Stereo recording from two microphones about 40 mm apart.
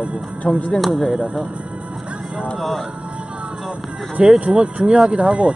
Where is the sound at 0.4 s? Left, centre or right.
Left.